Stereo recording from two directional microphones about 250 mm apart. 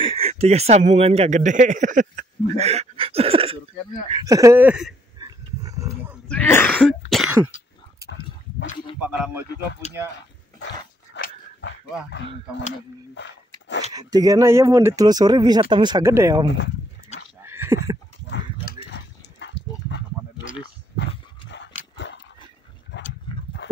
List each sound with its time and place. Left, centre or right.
0.0 s a man's voice: right; by 4.9 s centre
5.2 s dog: centre
6.2 s throat clearing: centre
9.0 s a sound: centre
11.1 s dog: left
13.9 s speech: centre
16.4 s speech: left
17.4 s a sound: centre
18.2 s a sound: left
18.9 s dog: left
20.9 s horse: left
22.9 s a sound: left
23.6 s horse: left